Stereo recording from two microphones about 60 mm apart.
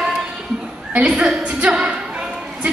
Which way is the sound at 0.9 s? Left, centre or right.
Right.